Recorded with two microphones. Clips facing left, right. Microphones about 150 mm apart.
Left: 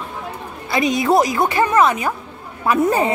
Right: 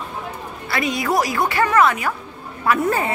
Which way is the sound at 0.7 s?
20° left (ahead or behind).